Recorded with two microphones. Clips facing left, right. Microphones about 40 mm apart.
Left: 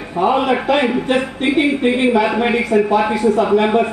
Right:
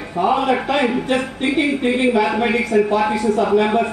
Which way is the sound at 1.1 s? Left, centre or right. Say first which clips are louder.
Left 2 dB; left.